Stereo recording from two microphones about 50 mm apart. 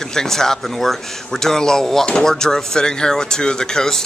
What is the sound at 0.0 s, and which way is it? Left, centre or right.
Speech, centre.